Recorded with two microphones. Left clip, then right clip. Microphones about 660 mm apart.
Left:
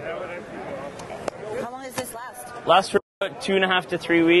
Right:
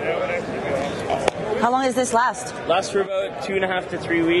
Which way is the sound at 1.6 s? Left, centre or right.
Right.